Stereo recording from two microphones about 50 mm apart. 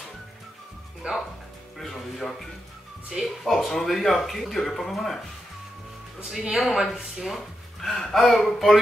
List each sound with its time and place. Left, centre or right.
1.0 s speech: centre
1.8 s speech: centre
3.1 s speech: centre
3.4 s speech: centre
6.6 s speech: centre